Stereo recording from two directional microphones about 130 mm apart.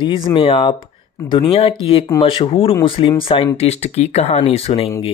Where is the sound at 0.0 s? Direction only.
40° left (ahead or behind).